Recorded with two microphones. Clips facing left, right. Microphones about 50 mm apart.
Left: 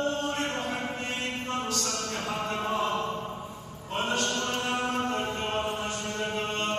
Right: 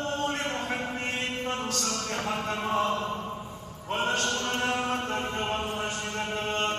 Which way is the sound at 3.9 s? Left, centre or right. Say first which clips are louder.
Right 2 dB; right.